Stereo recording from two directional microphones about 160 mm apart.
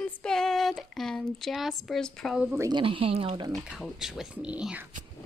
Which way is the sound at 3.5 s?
Centre (ahead or behind).